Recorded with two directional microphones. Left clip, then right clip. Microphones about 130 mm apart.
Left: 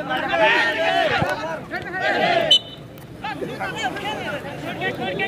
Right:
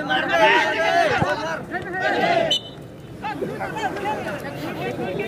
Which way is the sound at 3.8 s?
10° left (ahead or behind).